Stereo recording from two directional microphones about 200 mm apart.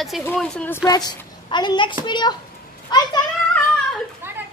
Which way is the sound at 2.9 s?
20° left (ahead or behind).